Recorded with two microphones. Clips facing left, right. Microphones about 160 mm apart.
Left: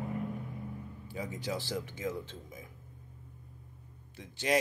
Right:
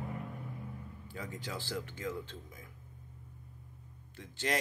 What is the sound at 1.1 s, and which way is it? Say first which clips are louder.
Speech: left 5 dB; 15° left (ahead or behind).